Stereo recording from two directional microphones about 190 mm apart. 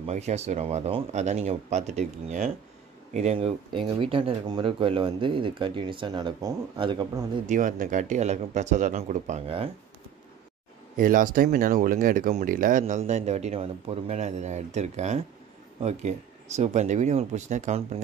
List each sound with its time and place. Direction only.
0.0 s speech: 35° right (ahead or behind)
7.4 s speech: 45° right (ahead or behind)
11.0 s speech: 45° right (ahead or behind)